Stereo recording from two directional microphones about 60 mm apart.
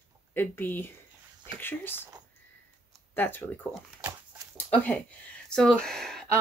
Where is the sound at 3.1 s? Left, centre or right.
Left.